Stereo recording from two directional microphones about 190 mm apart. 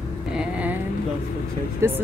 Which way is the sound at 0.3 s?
5° right (ahead or behind).